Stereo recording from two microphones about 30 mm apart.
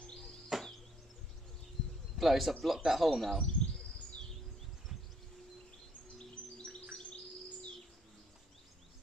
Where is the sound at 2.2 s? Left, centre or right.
Centre.